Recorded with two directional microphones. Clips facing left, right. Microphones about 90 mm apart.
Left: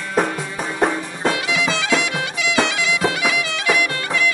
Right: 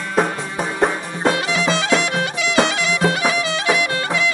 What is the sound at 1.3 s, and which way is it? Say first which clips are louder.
Music: right 2 dB; 35° right (ahead or behind).